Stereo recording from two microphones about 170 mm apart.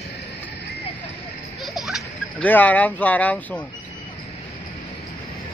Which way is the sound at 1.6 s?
Centre (ahead or behind).